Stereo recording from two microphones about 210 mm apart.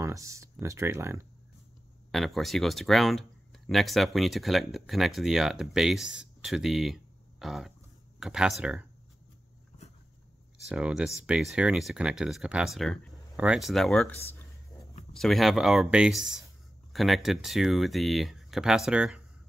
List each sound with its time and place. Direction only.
0.0 s speech: 15° right (ahead or behind)
2.0 s speech: centre (ahead or behind)
10.7 s speech: 5° right (ahead or behind)